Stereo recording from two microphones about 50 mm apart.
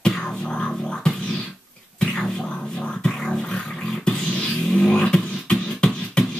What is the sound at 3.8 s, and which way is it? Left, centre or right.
Beatboxing, centre.